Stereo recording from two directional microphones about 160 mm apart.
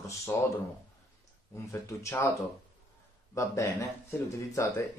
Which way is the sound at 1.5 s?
15° left (ahead or behind).